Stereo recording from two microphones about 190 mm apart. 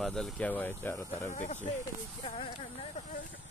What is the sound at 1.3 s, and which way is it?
Speech, 40° left (ahead or behind).